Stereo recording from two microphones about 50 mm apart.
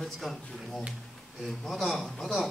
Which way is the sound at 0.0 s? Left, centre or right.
Centre.